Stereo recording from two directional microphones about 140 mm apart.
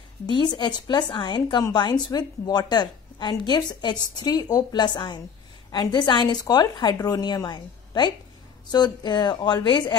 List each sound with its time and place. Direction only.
0.3 s a woman's voice: 30° left (ahead or behind)